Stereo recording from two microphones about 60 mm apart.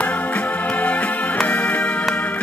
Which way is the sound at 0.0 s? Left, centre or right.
Left.